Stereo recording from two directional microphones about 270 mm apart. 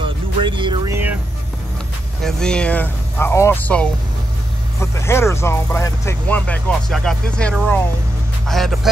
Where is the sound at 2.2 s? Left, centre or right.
Centre.